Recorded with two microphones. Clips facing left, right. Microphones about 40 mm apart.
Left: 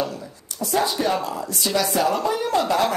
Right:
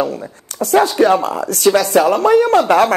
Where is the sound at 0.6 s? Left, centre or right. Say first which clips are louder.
Right 10 dB; right.